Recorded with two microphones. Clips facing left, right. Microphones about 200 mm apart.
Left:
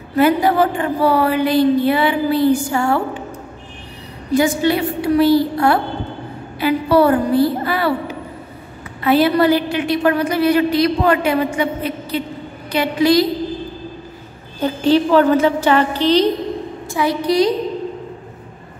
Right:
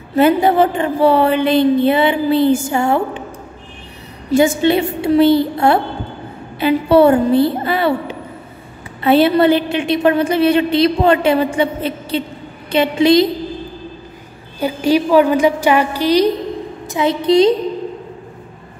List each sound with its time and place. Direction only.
0.1 s a woman's voice: 25° right (ahead or behind)
4.3 s a woman's voice: 25° right (ahead or behind)
14.6 s a woman's voice: 10° right (ahead or behind)